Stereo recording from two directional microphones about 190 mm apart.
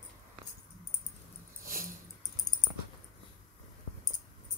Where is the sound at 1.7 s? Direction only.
45° right (ahead or behind).